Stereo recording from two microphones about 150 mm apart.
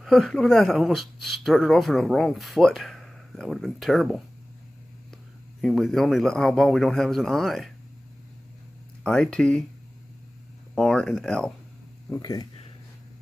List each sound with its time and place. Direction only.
0.0 s speech: centre (ahead or behind)
5.6 s speech: centre (ahead or behind)
9.0 s speech: 5° left (ahead or behind)
10.7 s speech: centre (ahead or behind)
12.1 s speech: 25° left (ahead or behind)